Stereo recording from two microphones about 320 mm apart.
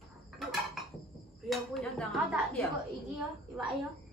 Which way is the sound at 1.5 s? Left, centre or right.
Centre.